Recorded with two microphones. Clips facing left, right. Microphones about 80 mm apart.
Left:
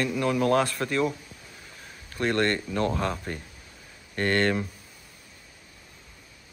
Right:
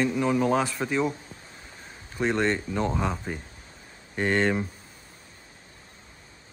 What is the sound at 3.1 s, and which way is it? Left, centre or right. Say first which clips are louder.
Speech: right 1 dB; centre.